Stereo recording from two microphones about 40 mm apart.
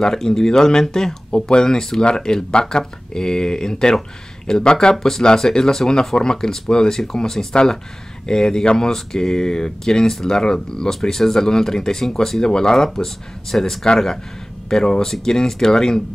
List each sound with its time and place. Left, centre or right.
0.0 s speech: centre